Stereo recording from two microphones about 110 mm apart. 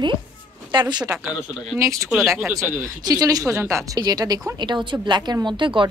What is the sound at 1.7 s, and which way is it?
A woman's voice, 30° right (ahead or behind).